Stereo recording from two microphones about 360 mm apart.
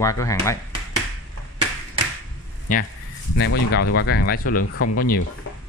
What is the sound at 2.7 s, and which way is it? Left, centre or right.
Speech, left.